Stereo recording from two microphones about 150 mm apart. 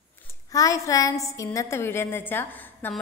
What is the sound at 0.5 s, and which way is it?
A woman's voice, 20° left (ahead or behind).